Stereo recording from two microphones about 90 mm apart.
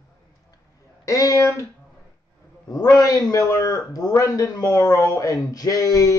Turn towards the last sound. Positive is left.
turn(degrees=40)  # may be behind; listen again after turning